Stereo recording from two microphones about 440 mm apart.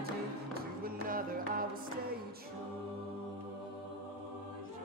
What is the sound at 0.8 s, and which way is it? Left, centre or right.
Music, centre.